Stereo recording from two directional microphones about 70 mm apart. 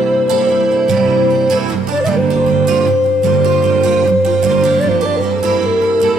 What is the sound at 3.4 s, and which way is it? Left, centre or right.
Music, centre.